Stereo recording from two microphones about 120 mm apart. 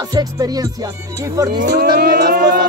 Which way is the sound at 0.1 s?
30° right (ahead or behind).